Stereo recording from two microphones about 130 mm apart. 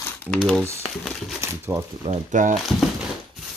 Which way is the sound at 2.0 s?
75° right (ahead or behind).